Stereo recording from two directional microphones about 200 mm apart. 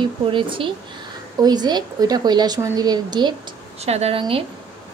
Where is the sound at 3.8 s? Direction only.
30° right (ahead or behind).